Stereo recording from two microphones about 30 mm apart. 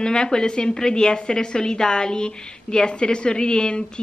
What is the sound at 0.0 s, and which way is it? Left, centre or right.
A woman's voice, left.